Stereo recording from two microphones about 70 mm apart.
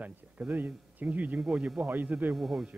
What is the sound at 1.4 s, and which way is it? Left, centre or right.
Speech, centre.